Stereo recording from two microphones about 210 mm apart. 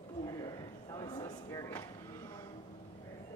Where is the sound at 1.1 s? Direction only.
15° left (ahead or behind).